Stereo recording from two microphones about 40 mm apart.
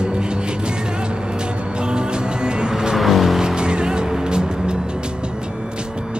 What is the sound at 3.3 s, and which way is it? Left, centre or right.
Vehicle, centre.